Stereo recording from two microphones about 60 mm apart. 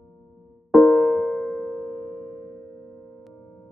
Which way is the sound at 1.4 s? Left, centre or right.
Left.